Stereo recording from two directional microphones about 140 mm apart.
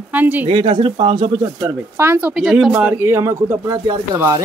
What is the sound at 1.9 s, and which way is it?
Speech, 15° right (ahead or behind).